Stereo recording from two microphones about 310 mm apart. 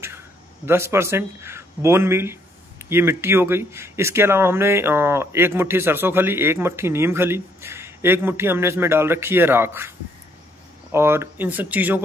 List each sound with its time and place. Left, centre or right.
0.7 s speech: centre